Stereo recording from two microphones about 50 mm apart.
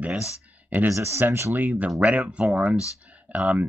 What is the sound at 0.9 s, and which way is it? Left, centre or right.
Speech, right.